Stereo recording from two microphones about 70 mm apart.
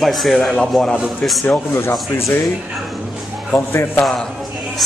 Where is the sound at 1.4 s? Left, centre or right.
Left.